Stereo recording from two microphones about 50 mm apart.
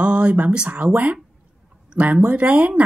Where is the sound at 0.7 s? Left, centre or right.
Right.